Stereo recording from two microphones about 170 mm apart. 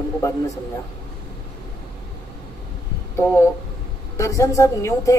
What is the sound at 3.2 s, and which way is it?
A woman's voice, 15° left (ahead or behind).